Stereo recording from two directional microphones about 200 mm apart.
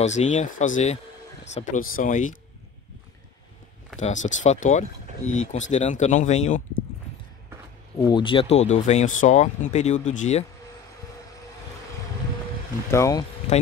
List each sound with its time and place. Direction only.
0.0 s speech: 35° left (ahead or behind)
4.0 s speech: 40° left (ahead or behind)
8.1 s speech: 25° left (ahead or behind)
12.9 s speech: 15° left (ahead or behind)
13.4 s speech: 30° left (ahead or behind)